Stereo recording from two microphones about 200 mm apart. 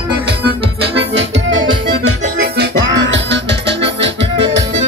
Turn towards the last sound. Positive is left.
turn(degrees=-65)  # may be behind; listen again after turning